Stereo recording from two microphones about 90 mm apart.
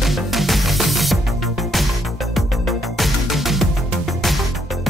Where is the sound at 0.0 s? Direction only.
Centre (ahead or behind).